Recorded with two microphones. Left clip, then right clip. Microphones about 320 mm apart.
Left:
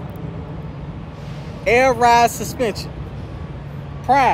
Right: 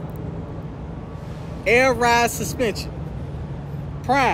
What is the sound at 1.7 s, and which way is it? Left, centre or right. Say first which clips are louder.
Speech: left 3 dB; centre.